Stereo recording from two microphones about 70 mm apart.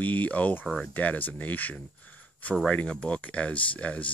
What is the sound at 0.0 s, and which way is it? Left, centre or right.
Speech, left.